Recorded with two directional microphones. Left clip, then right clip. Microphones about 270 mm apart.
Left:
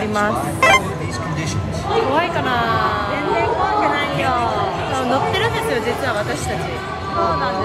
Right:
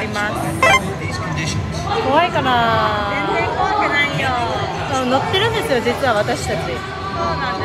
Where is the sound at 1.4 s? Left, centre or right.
Left.